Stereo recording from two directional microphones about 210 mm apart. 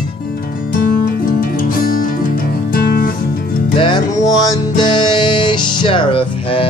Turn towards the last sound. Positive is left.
turn(degrees=25)  # may be behind; listen again after turning